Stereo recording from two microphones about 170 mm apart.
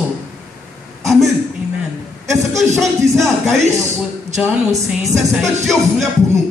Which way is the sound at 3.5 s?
40° right (ahead or behind).